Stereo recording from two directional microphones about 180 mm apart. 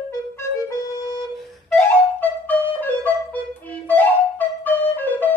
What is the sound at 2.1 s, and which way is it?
Flute, 10° left (ahead or behind).